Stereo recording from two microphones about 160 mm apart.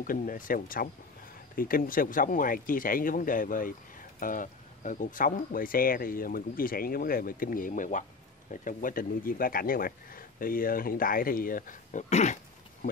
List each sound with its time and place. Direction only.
0.0 s speech: 60° left (ahead or behind)